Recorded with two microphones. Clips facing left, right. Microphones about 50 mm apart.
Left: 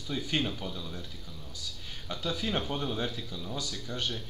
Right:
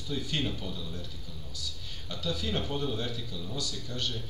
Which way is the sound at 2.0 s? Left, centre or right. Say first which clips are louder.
Left 1 dB; left.